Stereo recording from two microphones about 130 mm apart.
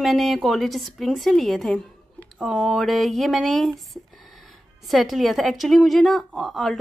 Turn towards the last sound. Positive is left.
turn(degrees=0)  # may be behind; listen again after turning